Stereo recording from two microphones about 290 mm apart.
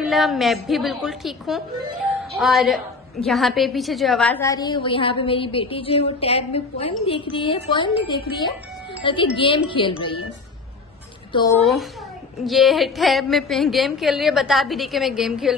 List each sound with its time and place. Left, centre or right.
0.0 s a woman's voice: centre
9.0 s a woman's voice: centre
11.3 s a woman's voice: centre
11.6 s a woman's voice: centre